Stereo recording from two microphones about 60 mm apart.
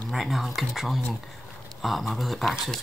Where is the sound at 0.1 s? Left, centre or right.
Centre.